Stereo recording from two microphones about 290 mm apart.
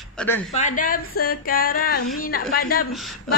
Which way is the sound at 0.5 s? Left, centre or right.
Left.